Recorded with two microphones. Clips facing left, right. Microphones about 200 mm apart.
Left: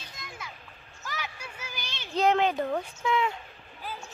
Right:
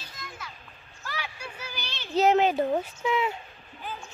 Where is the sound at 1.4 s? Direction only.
10° left (ahead or behind).